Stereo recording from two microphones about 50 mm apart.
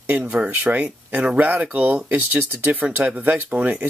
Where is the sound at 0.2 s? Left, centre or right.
Right.